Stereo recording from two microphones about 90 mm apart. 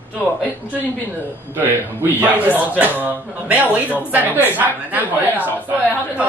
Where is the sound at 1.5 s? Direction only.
20° right (ahead or behind).